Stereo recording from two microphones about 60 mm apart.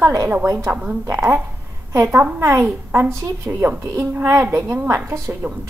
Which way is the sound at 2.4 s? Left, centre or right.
Right.